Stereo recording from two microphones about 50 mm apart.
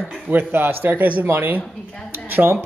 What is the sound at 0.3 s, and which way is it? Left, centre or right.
Speech, right.